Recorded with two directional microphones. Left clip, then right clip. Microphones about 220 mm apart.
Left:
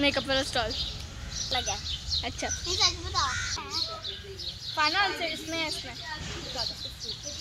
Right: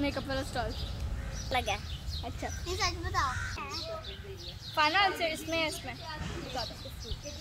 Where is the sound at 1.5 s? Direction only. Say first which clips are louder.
Left 1 dB; 15° right (ahead or behind).